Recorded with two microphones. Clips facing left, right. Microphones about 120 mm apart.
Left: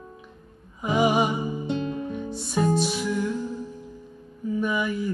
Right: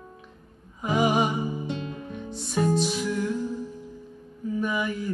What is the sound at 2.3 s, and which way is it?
Music, 5° left (ahead or behind).